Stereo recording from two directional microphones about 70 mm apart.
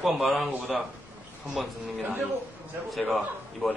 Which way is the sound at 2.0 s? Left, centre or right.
Right.